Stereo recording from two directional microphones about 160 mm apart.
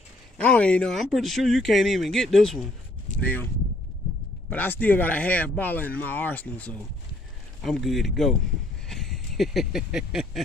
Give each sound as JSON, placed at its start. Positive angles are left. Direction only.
{"t": 0.4, "sound": "speech", "side_deg": 10}
{"t": 4.5, "sound": "speech", "side_deg": 10}
{"t": 8.8, "sound": "a sound", "side_deg": 0}